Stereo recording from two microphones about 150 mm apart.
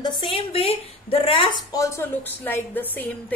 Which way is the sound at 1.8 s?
15° left (ahead or behind).